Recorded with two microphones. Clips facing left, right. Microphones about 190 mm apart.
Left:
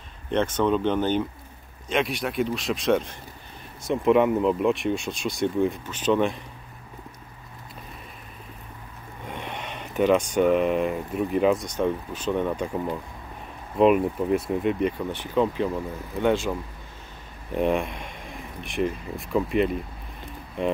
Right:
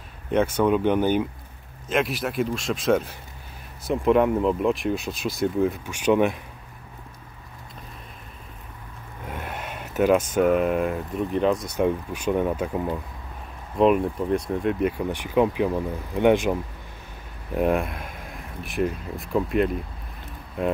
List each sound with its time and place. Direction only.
0.3 s speech: 10° right (ahead or behind)
9.2 s speech: 5° right (ahead or behind)
11.6 s speech: 10° right (ahead or behind)
17.6 s speech: centre (ahead or behind)